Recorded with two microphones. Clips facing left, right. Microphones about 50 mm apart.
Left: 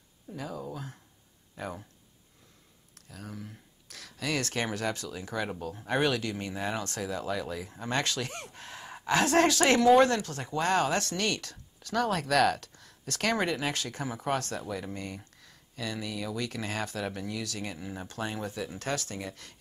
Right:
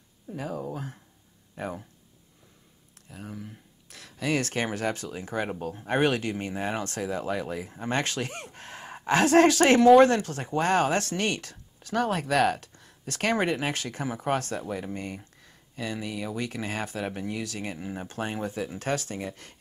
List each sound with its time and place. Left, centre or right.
0.4 s speech: right
3.1 s speech: right
15.0 s speech: right